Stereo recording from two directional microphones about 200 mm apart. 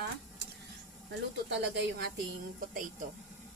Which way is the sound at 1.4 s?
60° right (ahead or behind).